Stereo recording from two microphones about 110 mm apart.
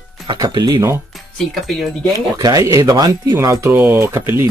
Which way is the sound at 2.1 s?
30° right (ahead or behind).